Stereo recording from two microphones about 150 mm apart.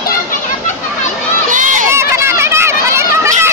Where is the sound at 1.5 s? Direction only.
60° right (ahead or behind).